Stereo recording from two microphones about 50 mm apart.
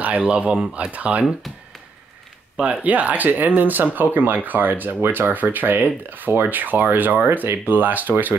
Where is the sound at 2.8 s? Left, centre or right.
Right.